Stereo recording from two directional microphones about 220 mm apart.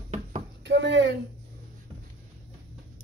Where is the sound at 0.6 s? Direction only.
55° right (ahead or behind).